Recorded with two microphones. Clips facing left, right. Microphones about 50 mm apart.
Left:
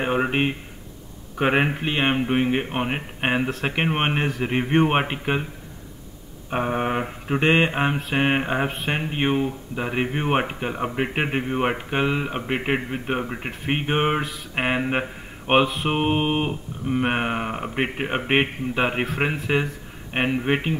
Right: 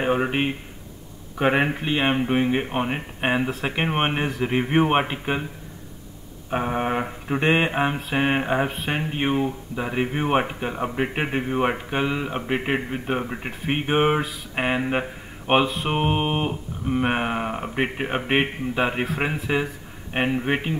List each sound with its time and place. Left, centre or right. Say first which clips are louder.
0.0 s speech: even; centre
6.5 s speech: even; centre
9.8 s speech: even; centre
11.4 s speech: right 1 dB; centre
15.7 s speech: left 1 dB; centre
16.9 s speech: even; centre
20.1 s speech: left 1 dB; centre